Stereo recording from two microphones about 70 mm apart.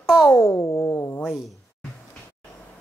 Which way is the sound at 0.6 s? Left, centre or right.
Left.